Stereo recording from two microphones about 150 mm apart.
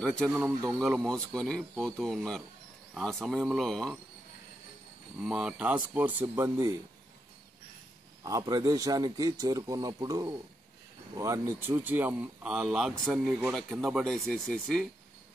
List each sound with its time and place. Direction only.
0.0 s speech: 5° left (ahead or behind)
5.2 s speech: 5° right (ahead or behind)
8.2 s a man's voice: 25° right (ahead or behind); by 14.9 s centre (ahead or behind)